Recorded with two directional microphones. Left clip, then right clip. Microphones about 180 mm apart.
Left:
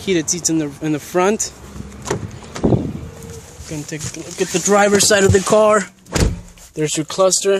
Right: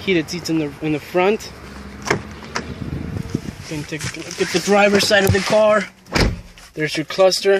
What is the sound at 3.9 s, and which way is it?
Speech, 30° left (ahead or behind).